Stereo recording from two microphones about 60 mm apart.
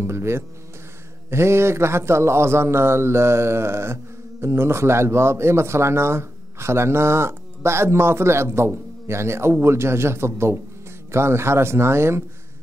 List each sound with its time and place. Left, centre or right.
0.0 s speech: right